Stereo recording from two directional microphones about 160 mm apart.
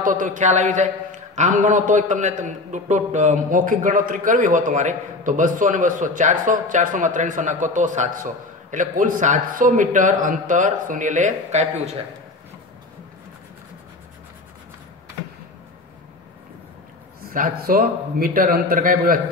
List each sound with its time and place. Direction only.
0.0 s a man's voice: 55° right (ahead or behind)
17.3 s a man's voice: 65° right (ahead or behind)